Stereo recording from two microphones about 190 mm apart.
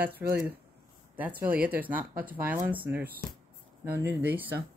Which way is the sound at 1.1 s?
10° right (ahead or behind).